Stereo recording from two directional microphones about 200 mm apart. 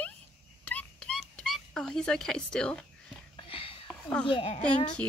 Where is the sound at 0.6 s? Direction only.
10° left (ahead or behind).